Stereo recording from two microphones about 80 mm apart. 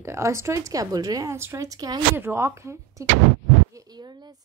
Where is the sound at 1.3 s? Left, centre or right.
Right.